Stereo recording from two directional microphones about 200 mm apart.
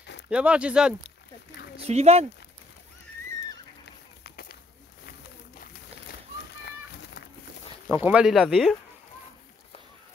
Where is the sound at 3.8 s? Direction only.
55° left (ahead or behind).